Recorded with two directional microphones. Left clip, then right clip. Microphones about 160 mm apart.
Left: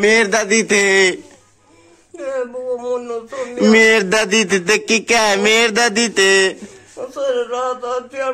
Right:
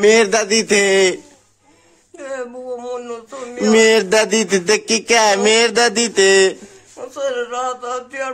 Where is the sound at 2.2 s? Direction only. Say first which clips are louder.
Left 4 dB; 35° right (ahead or behind).